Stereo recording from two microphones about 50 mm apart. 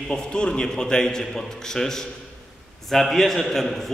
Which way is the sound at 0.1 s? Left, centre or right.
Centre.